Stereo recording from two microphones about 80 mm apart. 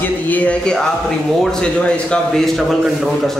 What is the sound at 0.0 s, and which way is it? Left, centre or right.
A man's voice, centre.